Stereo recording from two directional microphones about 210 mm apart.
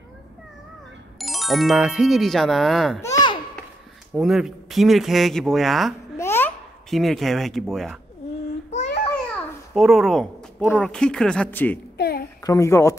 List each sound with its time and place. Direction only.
1.1 s speech: centre (ahead or behind)
3.0 s babbling: 15° left (ahead or behind)
4.1 s speech: centre (ahead or behind)
6.1 s babbling: 10° left (ahead or behind)
8.6 s babbling: 30° left (ahead or behind)
9.8 s speech: centre (ahead or behind)
12.0 s a sound: 50° left (ahead or behind)
12.4 s a woman's voice: 15° left (ahead or behind)